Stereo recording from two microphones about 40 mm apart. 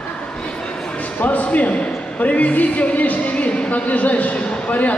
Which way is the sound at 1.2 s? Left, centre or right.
Left.